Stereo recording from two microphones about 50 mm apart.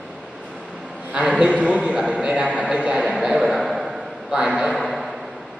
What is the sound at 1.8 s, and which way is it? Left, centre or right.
Speech, centre.